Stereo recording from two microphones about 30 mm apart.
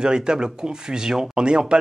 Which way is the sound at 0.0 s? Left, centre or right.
Right.